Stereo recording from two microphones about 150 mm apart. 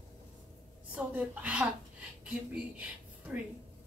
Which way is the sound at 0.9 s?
10° right (ahead or behind).